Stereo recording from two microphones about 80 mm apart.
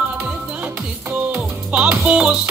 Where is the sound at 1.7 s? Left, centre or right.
Centre.